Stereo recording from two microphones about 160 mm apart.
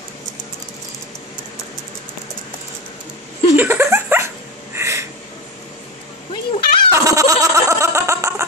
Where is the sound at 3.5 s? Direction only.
15° right (ahead or behind).